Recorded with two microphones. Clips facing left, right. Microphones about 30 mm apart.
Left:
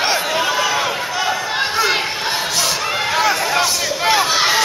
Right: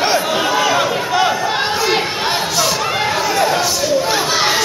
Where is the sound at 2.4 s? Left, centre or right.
Centre.